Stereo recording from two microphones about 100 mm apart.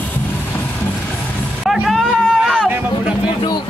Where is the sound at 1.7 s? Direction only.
Centre (ahead or behind).